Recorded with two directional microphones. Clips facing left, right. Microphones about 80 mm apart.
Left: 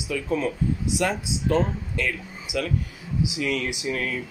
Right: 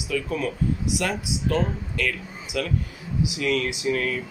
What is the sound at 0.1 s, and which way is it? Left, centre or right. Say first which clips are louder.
Speech: left 1 dB; left.